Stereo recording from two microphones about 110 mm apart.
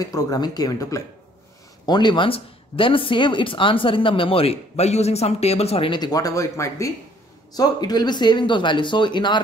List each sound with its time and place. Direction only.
0.0 s speech: 35° left (ahead or behind)
1.9 s speech: 40° left (ahead or behind); by 5.9 s 70° left (ahead or behind)
5.9 s speech: 40° left (ahead or behind)